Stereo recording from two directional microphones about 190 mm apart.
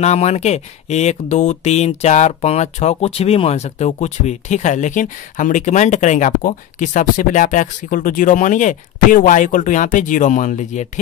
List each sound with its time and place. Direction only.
0.0 s speech: 35° left (ahead or behind)